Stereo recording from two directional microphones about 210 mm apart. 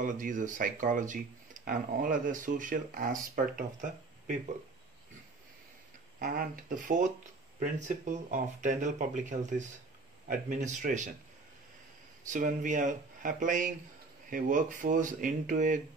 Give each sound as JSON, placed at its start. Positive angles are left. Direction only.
{"t": 0.0, "sound": "speech", "side_deg": -40}
{"t": 6.1, "sound": "speech", "side_deg": -40}
{"t": 12.3, "sound": "speech", "side_deg": -35}